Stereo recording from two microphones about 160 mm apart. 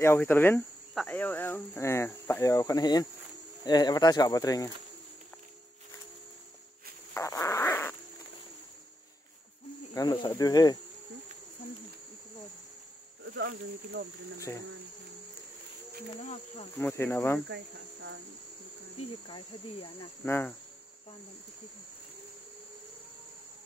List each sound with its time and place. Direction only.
0.0 s speech: 15° left (ahead or behind)
7.2 s fart: 20° left (ahead or behind)
9.9 s speech: 25° left (ahead or behind)
13.4 s speech: 80° right
16.7 s speech: 15° left (ahead or behind)
18.9 s cricket: 35° left (ahead or behind)
20.2 s speech: 15° left (ahead or behind)